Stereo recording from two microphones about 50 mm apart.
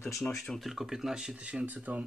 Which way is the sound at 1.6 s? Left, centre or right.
Right.